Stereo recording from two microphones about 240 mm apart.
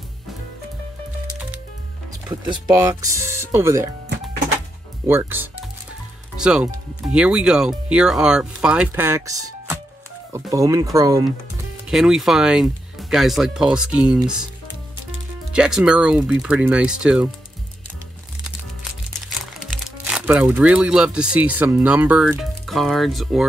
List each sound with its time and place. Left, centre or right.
2.2 s speech: centre
5.0 s speech: centre
11.9 s speech: centre
19.2 s speech: centre